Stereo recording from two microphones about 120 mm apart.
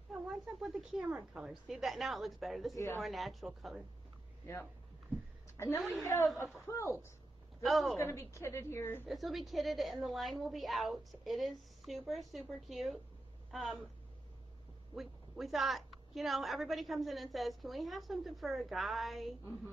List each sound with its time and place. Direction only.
0.6 s a woman's voice: centre (ahead or behind)
2.7 s a woman's voice: 25° left (ahead or behind)
3.0 s a woman's voice: centre (ahead or behind)
5.6 s a woman's voice: 25° left (ahead or behind)
7.6 s a woman's voice: centre (ahead or behind)
8.0 s a woman's voice: 25° left (ahead or behind)
9.0 s a woman's voice: centre (ahead or behind)
15.0 s a woman's voice: centre (ahead or behind)